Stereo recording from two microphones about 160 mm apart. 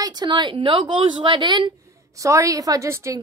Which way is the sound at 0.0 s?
25° right (ahead or behind).